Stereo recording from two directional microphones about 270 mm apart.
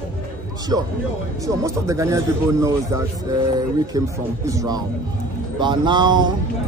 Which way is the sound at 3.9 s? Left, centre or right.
Centre.